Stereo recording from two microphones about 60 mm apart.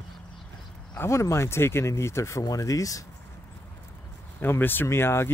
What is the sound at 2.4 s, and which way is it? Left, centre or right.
Speech, left.